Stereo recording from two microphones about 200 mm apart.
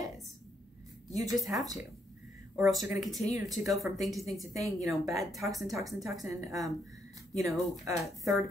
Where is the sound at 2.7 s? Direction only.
15° right (ahead or behind).